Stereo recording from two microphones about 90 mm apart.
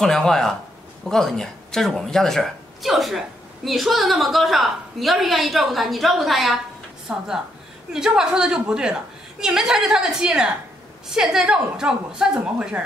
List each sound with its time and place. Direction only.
0.0 s a woman's voice: 5° left (ahead or behind)